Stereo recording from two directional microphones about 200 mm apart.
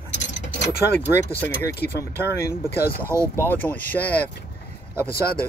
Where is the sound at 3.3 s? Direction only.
10° left (ahead or behind).